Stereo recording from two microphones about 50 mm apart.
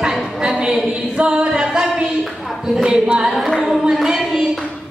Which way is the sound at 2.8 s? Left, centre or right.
Centre.